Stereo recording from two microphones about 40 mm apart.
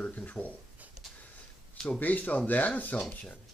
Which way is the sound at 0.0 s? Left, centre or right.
Left.